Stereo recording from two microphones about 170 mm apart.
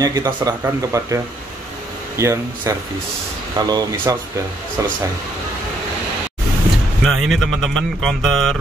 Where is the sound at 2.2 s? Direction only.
15° right (ahead or behind).